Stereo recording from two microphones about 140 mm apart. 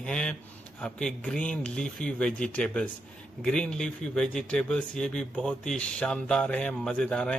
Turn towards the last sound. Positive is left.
turn(degrees=5)  # may be behind; listen again after turning